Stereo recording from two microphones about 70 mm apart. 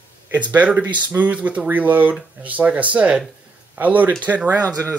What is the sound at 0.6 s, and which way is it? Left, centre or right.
Speech, right.